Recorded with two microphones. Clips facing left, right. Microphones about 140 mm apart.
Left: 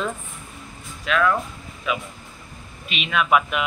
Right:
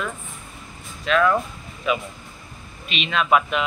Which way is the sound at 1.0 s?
Centre (ahead or behind).